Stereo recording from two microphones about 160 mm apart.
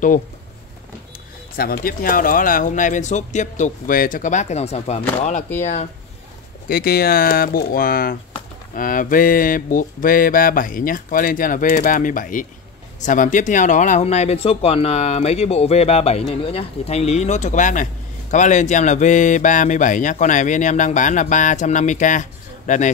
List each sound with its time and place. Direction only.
1.6 s speech: 65° left (ahead or behind); by 5.9 s 45° left (ahead or behind)
6.7 s speech: 75° left (ahead or behind)
8.7 s mantra: 60° left (ahead or behind)
13.0 s speech: 55° left (ahead or behind)